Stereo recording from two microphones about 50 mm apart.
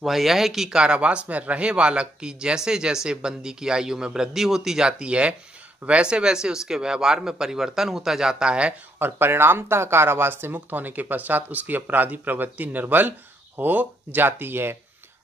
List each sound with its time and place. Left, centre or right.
0.0 s speech: centre
9.0 s speech: right